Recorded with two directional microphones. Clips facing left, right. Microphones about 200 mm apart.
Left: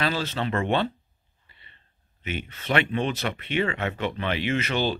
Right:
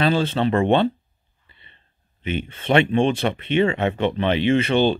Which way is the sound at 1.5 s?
25° right (ahead or behind).